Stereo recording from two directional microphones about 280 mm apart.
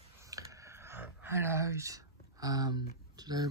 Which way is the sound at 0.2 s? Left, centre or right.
Centre.